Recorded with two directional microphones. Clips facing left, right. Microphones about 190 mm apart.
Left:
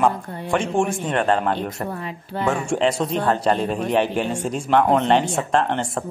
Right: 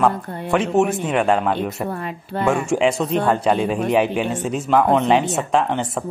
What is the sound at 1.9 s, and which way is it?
Speech, 55° right (ahead or behind).